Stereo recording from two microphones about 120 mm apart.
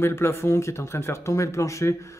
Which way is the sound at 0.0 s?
20° left (ahead or behind).